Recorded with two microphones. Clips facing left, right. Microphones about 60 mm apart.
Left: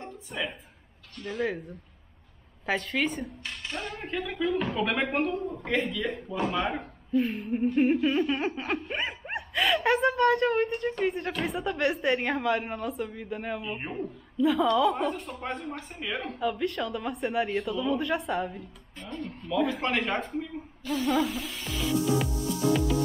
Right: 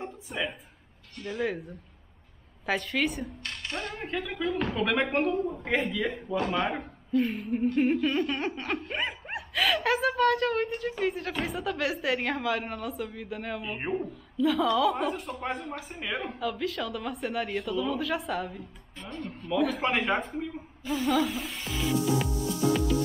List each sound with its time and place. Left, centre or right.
0.3 s laughter: centre
5.9 s speech: centre
6.3 s laughter: centre
13.7 s speech: centre
14.3 s laughter: centre
16.3 s laughter: centre
19.6 s speech: centre
21.3 s music: centre